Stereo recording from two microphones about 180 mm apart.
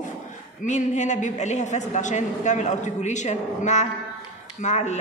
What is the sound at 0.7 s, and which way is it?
A woman's voice, 40° left (ahead or behind).